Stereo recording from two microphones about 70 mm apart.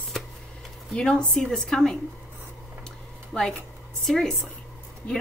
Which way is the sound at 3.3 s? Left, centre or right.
Centre.